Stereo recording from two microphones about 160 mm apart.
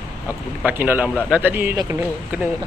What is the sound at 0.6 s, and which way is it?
Speech, 10° right (ahead or behind).